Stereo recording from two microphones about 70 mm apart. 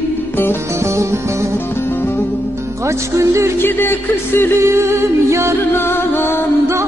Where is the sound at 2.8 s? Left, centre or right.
Right.